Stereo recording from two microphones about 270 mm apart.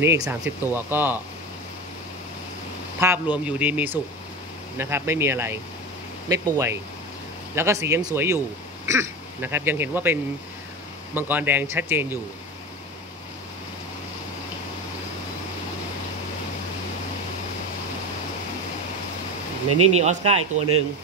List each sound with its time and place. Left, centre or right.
0.0 s speech: centre
3.0 s speech: centre
11.1 s speech: centre
20.0 s speech: right